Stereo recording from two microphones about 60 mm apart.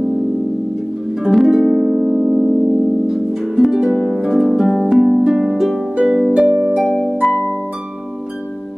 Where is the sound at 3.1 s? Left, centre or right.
Centre.